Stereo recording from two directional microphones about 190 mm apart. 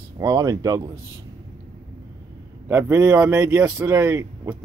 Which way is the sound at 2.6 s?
10° right (ahead or behind).